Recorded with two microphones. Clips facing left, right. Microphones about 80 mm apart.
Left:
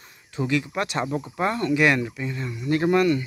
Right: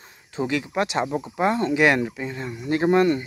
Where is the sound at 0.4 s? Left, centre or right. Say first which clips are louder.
Right 1 dB; right.